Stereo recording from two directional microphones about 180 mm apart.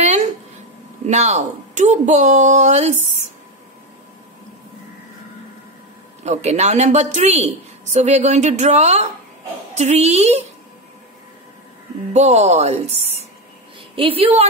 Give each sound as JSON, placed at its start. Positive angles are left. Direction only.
{"t": 0.0, "sound": "a sound", "side_deg": -40}
{"t": 1.0, "sound": "a woman's voice", "side_deg": -40}
{"t": 6.2, "sound": "a woman's voice", "side_deg": -40}
{"t": 12.1, "sound": "a woman's voice", "side_deg": -40}